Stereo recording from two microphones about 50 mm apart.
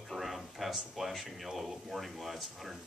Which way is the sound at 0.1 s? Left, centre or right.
Centre.